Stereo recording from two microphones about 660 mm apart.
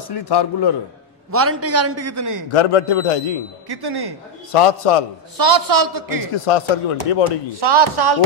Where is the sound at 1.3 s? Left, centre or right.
Centre.